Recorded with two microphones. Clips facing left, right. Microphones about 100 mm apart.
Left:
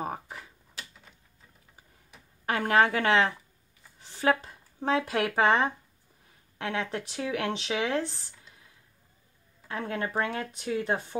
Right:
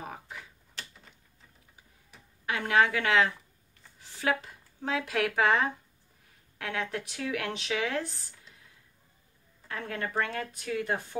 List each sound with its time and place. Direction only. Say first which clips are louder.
0.0 s typewriter: left 6 dB; 35° left (ahead or behind)
0.8 s a sound: left 1 dB; 10° left (ahead or behind)
2.4 s a woman's voice: left 2 dB; 40° left (ahead or behind); by 8.1 s 25° left (ahead or behind)
9.7 s speech: left 3 dB; 25° left (ahead or behind)